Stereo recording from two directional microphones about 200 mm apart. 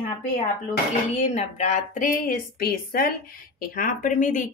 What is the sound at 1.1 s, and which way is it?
A woman's voice, 35° left (ahead or behind).